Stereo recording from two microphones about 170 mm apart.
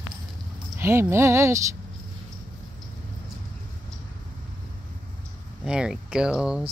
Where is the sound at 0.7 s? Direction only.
15° right (ahead or behind).